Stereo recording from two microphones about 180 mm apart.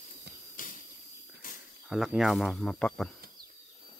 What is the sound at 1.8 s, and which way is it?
Speech, 5° right (ahead or behind).